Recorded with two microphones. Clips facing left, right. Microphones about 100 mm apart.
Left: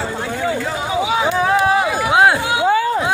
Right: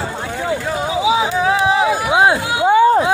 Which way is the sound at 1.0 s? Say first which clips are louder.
Right 2 dB; 10° right (ahead or behind).